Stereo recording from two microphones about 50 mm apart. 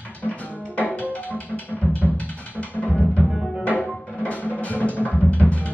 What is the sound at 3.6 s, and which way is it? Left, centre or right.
Music, left.